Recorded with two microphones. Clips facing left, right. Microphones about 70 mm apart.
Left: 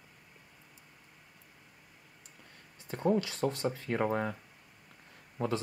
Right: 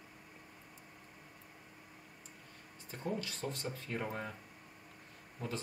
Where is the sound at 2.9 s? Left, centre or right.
Left.